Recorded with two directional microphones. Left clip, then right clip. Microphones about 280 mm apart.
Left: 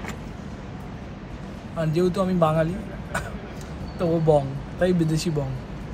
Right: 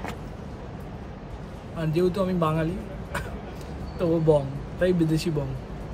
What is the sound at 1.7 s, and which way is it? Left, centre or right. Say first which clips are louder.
Speech: left 2 dB; centre.